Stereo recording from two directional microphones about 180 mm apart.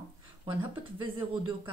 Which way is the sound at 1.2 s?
30° right (ahead or behind).